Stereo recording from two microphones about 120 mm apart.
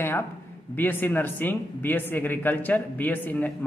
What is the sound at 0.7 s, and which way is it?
Speech, 15° left (ahead or behind).